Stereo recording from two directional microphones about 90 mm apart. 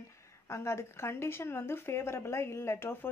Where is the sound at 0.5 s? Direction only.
30° left (ahead or behind).